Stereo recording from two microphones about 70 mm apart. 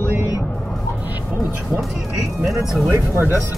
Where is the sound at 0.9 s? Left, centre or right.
Right.